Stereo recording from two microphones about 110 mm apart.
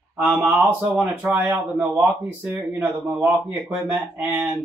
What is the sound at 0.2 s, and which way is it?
Speech, 15° right (ahead or behind).